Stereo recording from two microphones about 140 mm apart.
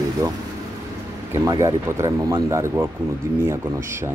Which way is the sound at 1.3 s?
20° right (ahead or behind).